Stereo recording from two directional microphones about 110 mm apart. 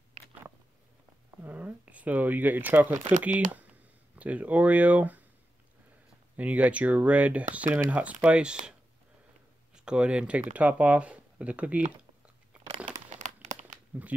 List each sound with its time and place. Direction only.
1.3 s speech: 15° right (ahead or behind)
6.3 s speech: 15° right (ahead or behind)
9.8 s speech: 10° right (ahead or behind)
13.2 s crumpling: 90° right
13.9 s speech: 15° right (ahead or behind)